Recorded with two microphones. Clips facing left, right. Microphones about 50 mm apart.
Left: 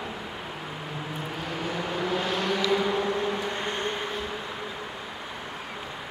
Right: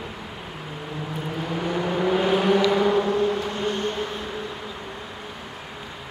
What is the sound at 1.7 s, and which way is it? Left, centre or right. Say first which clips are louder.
Vehicle: right 7 dB; centre.